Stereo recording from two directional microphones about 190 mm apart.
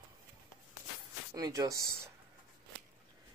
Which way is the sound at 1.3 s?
20° right (ahead or behind).